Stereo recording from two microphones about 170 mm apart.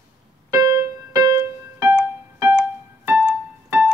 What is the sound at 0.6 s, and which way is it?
Keyboard, 20° right (ahead or behind).